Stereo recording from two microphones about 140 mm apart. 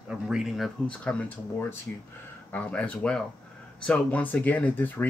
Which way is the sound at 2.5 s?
10° left (ahead or behind).